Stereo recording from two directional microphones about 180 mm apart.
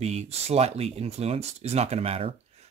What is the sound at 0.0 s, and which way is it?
Speech, 35° right (ahead or behind).